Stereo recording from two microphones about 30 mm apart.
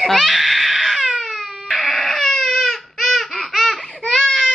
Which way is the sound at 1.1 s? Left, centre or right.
Centre.